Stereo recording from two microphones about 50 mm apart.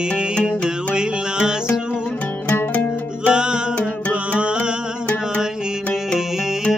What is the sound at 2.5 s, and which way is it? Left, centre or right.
Music, left.